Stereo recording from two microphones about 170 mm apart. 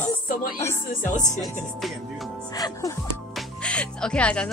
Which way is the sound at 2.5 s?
20° left (ahead or behind).